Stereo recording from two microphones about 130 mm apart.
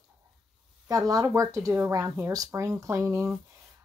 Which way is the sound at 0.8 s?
25° right (ahead or behind).